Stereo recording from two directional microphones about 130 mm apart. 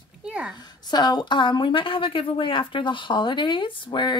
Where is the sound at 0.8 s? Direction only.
30° left (ahead or behind).